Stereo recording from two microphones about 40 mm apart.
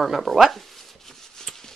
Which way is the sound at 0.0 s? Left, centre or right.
Centre.